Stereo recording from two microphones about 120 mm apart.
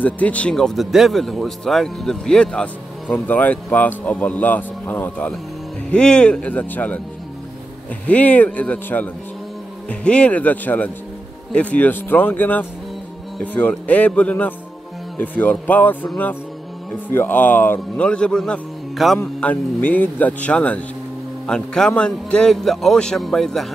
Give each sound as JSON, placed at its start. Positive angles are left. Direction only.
{"t": 0.0, "sound": "speech", "side_deg": 10}
{"t": 8.1, "sound": "speech", "side_deg": 10}
{"t": 19.1, "sound": "a man's voice", "side_deg": 15}